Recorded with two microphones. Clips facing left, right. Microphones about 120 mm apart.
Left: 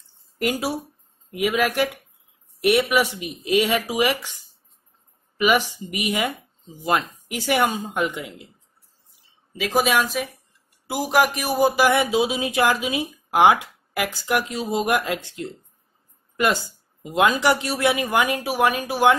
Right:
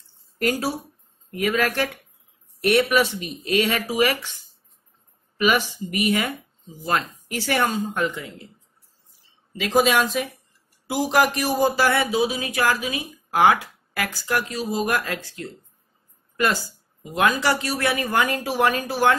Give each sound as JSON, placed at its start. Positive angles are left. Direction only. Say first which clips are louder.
{"t": 0.4, "sound": "speech", "louder": "even", "side_deg": 15}
{"t": 9.6, "sound": "a woman's voice", "louder": "right 1 dB", "side_deg": 0}
{"t": 11.6, "sound": "a woman's voice", "louder": "left 3 dB", "side_deg": 15}
{"t": 17.0, "sound": "speech", "louder": "left 2 dB", "side_deg": 20}